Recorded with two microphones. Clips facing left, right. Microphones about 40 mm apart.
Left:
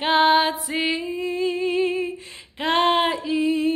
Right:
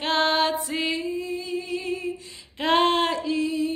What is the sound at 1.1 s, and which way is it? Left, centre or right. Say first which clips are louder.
Humming: left 5 dB; left.